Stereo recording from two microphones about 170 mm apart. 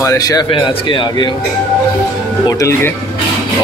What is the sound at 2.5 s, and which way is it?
Speech, 15° left (ahead or behind).